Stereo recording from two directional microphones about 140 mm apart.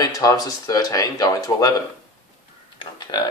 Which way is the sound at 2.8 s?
30° left (ahead or behind).